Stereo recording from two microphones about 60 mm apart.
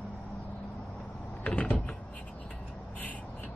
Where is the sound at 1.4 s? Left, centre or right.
Left.